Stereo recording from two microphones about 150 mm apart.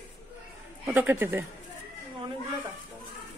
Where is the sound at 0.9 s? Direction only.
10° right (ahead or behind).